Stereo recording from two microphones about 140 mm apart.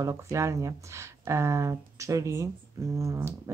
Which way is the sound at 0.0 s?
20° right (ahead or behind).